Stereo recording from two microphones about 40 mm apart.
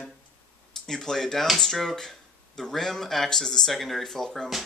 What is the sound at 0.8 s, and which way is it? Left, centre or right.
Speech, centre.